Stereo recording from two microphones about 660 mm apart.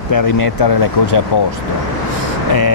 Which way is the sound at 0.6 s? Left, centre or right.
Left.